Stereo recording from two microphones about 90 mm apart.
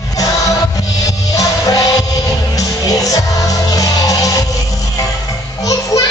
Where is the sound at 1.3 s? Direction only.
40° left (ahead or behind).